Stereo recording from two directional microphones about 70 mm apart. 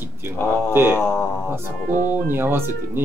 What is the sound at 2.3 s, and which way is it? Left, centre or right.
Speech, right.